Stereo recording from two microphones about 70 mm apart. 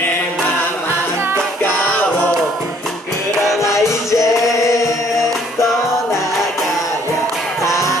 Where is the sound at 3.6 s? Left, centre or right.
Left.